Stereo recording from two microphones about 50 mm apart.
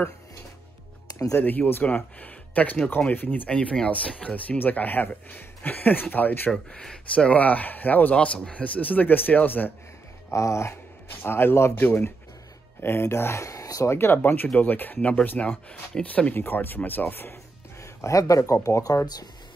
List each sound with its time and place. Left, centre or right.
1.4 s speech: left
3.4 s speech: left
6.5 s speech: centre
7.2 s speech: left
10.3 s a sound: left
11.1 s speech: left
11.7 s speech: left
12.8 s speech: left
13.9 s speech: left
16.3 s speech: left
17.7 s speech: left